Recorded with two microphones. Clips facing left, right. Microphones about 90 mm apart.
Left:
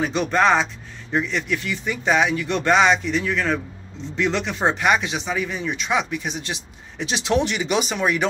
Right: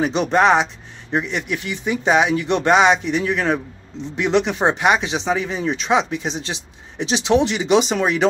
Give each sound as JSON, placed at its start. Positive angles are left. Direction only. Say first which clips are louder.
{"t": 0.0, "sound": "speech", "louder": "right 3 dB", "side_deg": -20}